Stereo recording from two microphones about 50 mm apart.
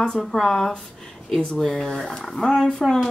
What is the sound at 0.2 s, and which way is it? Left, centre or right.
Speech, centre.